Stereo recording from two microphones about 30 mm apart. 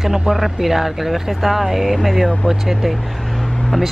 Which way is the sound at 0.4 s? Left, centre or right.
Centre.